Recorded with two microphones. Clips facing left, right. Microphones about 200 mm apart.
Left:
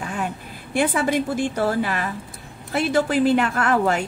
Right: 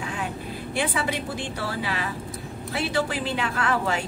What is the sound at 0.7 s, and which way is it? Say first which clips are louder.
A woman's voice: left 7 dB; 50° left (ahead or behind).